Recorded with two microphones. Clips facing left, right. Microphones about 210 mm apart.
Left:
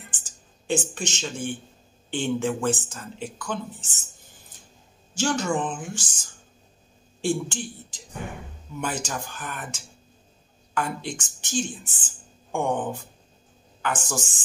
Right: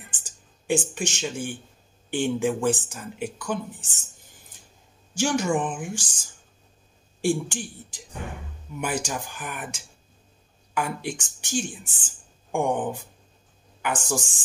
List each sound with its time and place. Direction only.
0.2 s speech: 10° right (ahead or behind)
5.1 s speech: 15° right (ahead or behind)
7.2 s speech: 10° right (ahead or behind)
12.4 s a sound: 15° right (ahead or behind)
13.8 s speech: 15° right (ahead or behind)